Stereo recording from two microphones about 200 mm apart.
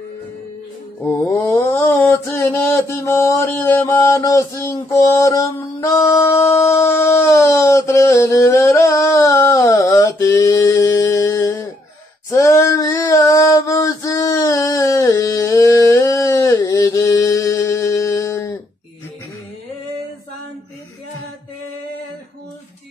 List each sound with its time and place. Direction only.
1.0 s mantra: 10° left (ahead or behind)
12.3 s female singing: 15° left (ahead or behind)